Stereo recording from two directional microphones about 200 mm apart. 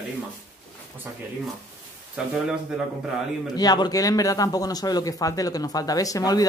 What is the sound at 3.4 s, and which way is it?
Speech, 20° left (ahead or behind).